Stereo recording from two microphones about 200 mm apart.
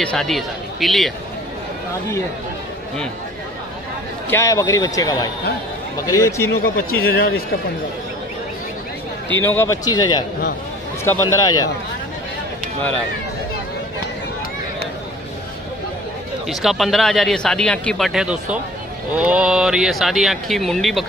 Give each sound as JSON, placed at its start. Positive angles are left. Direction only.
{"t": 0.0, "sound": "speech", "side_deg": 5}
{"t": 4.3, "sound": "speech", "side_deg": 15}
{"t": 6.6, "sound": "speech", "side_deg": 50}
{"t": 9.4, "sound": "speech", "side_deg": 10}
{"t": 16.4, "sound": "speech", "side_deg": 0}